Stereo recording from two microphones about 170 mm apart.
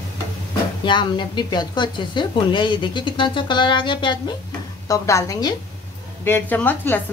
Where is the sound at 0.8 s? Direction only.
25° left (ahead or behind).